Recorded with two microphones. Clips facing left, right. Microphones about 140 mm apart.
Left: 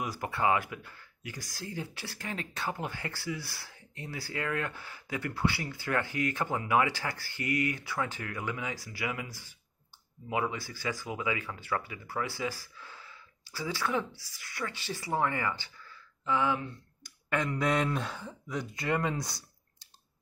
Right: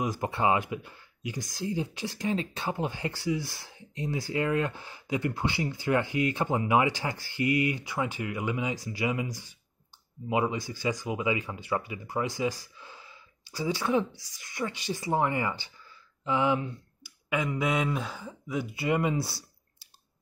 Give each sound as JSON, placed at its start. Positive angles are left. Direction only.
{"t": 0.0, "sound": "speech", "side_deg": -20}
{"t": 17.0, "sound": "speech", "side_deg": -5}